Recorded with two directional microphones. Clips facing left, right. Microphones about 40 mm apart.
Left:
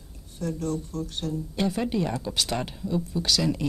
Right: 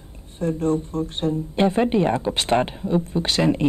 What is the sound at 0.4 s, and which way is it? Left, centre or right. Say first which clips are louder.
Speech: right 8 dB; right.